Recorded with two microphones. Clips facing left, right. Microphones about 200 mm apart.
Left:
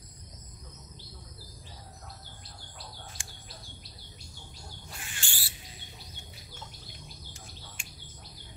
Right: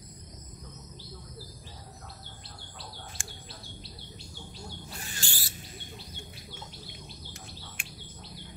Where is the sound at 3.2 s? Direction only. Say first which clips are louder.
Right 5 dB; 50° right (ahead or behind).